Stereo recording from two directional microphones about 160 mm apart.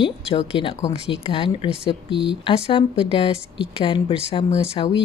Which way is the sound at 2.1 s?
35° right (ahead or behind).